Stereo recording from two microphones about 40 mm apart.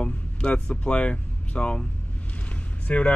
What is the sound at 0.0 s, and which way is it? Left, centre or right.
Speech, left.